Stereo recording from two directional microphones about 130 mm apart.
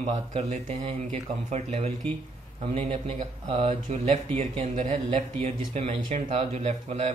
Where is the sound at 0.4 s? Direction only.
50° right (ahead or behind).